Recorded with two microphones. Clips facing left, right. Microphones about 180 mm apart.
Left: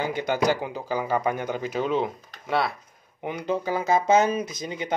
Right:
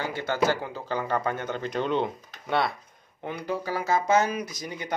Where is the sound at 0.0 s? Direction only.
15° left (ahead or behind); by 2.7 s centre (ahead or behind).